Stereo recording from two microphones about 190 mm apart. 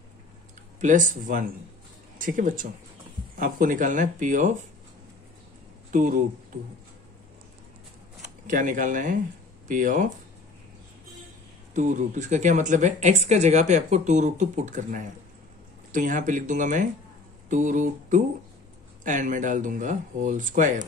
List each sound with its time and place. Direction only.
0.7 s speech: 40° right (ahead or behind)
5.9 s a sound: 45° right (ahead or behind)
8.5 s speech: 45° right (ahead or behind)
11.7 s speech: 40° right (ahead or behind)